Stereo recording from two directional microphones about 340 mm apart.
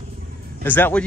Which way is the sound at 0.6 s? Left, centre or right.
Centre.